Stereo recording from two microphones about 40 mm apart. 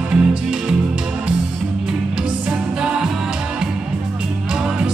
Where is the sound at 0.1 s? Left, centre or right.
Right.